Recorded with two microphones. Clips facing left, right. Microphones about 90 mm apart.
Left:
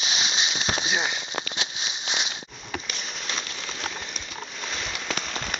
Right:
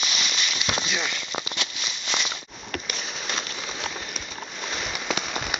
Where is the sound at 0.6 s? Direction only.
75° right (ahead or behind).